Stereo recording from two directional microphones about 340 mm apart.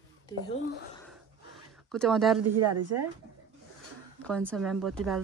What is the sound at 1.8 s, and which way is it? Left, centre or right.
Speech, centre.